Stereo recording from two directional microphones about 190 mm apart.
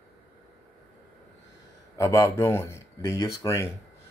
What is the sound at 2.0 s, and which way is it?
Speech, 15° left (ahead or behind).